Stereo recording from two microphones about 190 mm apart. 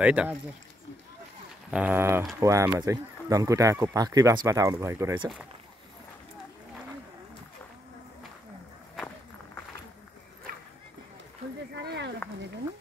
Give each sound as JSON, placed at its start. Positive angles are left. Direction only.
{"t": 0.0, "sound": "speech", "side_deg": -5}
{"t": 1.7, "sound": "speech", "side_deg": -10}
{"t": 11.7, "sound": "a sound", "side_deg": -65}